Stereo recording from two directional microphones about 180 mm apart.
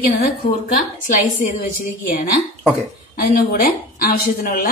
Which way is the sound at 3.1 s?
55° left (ahead or behind).